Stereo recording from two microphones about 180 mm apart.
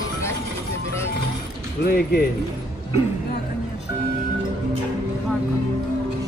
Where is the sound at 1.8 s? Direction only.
60° left (ahead or behind).